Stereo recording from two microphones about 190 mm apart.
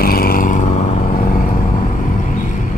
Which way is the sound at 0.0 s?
50° left (ahead or behind).